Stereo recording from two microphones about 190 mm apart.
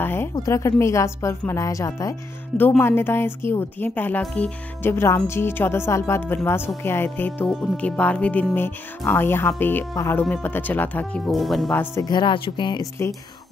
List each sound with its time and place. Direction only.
0.0 s speech: 10° left (ahead or behind)
11.8 s speech: 15° left (ahead or behind)